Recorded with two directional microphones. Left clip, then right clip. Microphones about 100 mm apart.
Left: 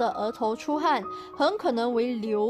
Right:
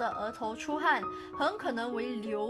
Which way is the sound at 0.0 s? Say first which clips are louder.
Left 7 dB; 45° left (ahead or behind).